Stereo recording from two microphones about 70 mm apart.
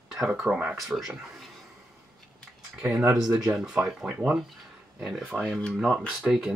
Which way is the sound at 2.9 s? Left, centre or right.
Centre.